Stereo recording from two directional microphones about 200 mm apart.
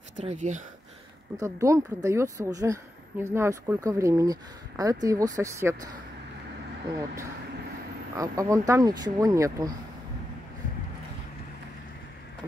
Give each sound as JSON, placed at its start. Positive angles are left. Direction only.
{"t": 0.2, "sound": "speech", "side_deg": -35}
{"t": 1.3, "sound": "speech", "side_deg": -15}
{"t": 8.2, "sound": "speech", "side_deg": -15}